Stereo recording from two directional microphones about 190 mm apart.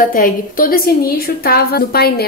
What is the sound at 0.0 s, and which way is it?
A woman's voice, 45° left (ahead or behind).